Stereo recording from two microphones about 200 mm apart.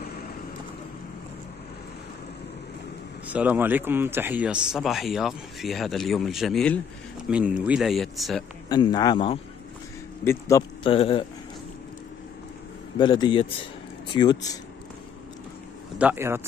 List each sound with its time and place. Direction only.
3.3 s a man's voice: 5° right (ahead or behind)
8.6 s a man's voice: 20° left (ahead or behind)
10.8 s a man's voice: 25° left (ahead or behind)
13.0 s a man's voice: 20° left (ahead or behind)
16.0 s speech: 10° right (ahead or behind)